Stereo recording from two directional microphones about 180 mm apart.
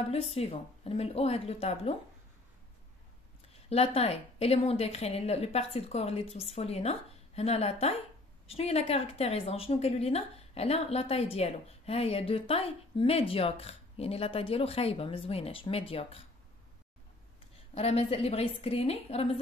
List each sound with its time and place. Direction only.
0.1 s a woman's voice: 35° left (ahead or behind)
3.6 s a woman's voice: 35° left (ahead or behind)
17.7 s a woman's voice: 35° left (ahead or behind)